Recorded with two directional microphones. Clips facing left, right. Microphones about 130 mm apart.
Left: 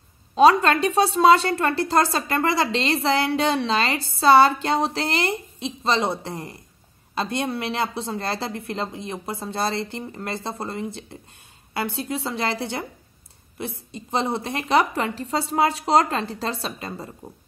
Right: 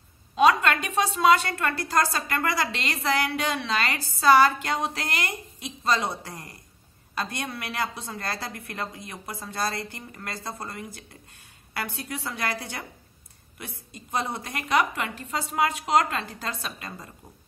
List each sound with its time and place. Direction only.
0.4 s a woman's voice: 30° left (ahead or behind)